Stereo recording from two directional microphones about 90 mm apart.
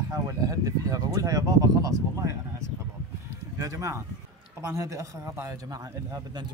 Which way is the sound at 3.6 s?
35° right (ahead or behind).